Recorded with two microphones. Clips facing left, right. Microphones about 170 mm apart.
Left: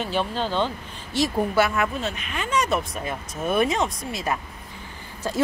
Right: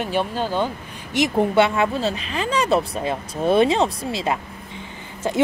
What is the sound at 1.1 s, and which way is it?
Speech, 20° right (ahead or behind).